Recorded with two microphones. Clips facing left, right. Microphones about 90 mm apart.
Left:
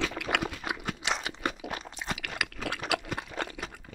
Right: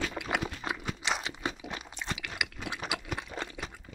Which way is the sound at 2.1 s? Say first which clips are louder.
Left 2 dB; 50° left (ahead or behind).